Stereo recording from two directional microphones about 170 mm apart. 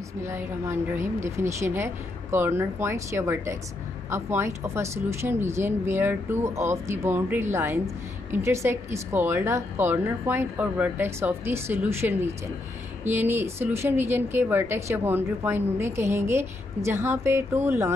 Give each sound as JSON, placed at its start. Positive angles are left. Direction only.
{"t": 0.2, "sound": "a woman's voice", "side_deg": -15}